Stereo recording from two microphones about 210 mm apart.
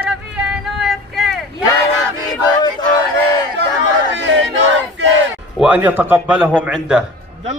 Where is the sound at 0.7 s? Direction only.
Centre (ahead or behind).